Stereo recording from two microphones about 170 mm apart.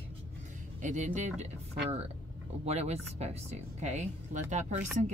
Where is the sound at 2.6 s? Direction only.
40° right (ahead or behind).